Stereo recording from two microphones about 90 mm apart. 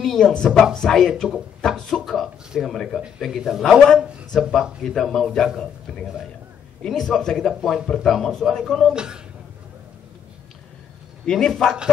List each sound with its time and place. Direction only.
0.0 s a sound: 5° left (ahead or behind)
0.7 s speech: 5° left (ahead or behind)
2.0 s a sound: 5° right (ahead or behind)
3.2 s speech: centre (ahead or behind)
8.9 s speech: 10° right (ahead or behind)
11.2 s speech: 5° left (ahead or behind)